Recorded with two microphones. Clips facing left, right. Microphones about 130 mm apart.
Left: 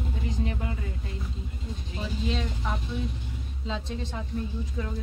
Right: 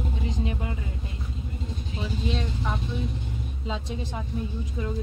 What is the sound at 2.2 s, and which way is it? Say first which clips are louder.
Vehicle: even; centre (ahead or behind).